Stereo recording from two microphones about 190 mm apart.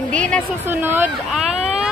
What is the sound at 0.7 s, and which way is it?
Speech, 10° right (ahead or behind).